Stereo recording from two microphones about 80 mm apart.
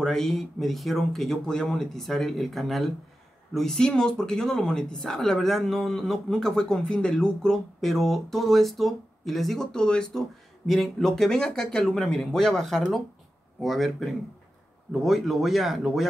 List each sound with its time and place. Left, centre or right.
0.0 s speech: centre